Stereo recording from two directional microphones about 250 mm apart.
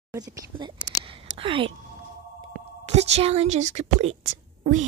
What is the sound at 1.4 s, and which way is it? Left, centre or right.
Speech, right.